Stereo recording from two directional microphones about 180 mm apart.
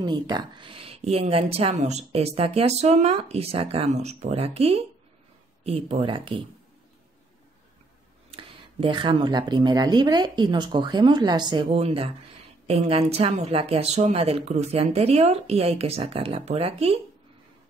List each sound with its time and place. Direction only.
0.0 s speech: 25° right (ahead or behind)
8.3 s speech: 30° right (ahead or behind)